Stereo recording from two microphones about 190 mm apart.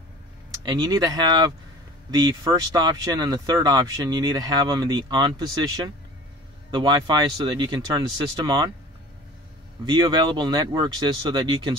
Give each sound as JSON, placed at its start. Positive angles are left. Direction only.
{"t": 0.7, "sound": "speech", "side_deg": -20}
{"t": 10.0, "sound": "speech", "side_deg": -25}